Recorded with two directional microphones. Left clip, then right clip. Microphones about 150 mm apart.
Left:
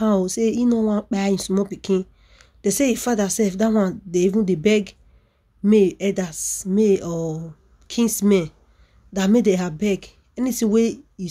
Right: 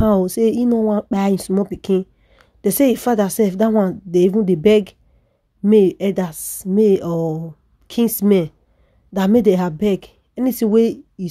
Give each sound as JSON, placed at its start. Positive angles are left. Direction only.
{"t": 0.0, "sound": "speech", "side_deg": -40}